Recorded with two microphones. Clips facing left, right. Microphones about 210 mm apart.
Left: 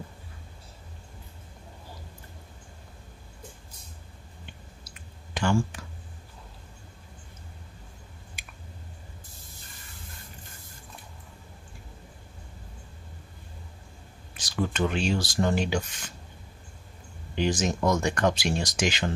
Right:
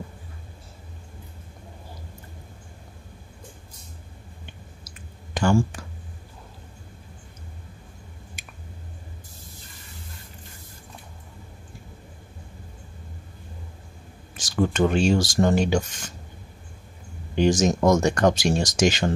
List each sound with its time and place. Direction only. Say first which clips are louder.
5.3 s speech: right 5 dB; 45° right (ahead or behind)
14.3 s speech: right 6 dB; 45° right (ahead or behind)
17.4 s speech: right 6 dB; 45° right (ahead or behind)